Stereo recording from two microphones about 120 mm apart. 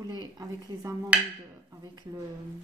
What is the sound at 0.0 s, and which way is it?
Speech, 35° right (ahead or behind).